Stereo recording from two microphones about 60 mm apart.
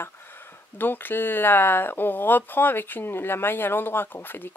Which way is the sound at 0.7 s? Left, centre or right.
Left.